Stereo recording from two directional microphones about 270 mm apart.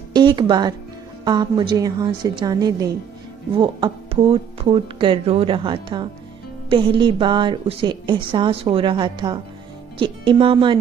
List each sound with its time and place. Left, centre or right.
0.1 s a woman's voice: centre